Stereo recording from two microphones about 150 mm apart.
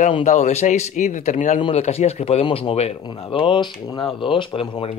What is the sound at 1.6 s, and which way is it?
Speech, 45° left (ahead or behind).